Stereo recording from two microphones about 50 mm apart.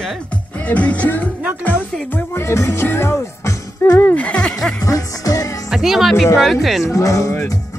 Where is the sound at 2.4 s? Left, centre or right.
Left.